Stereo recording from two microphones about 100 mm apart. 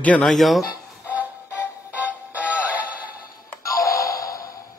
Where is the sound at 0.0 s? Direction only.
15° left (ahead or behind).